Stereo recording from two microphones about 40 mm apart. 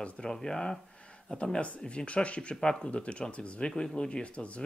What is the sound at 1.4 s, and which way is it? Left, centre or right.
Speech, left.